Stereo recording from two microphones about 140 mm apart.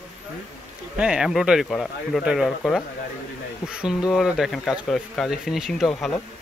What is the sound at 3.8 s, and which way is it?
Speech, 5° right (ahead or behind).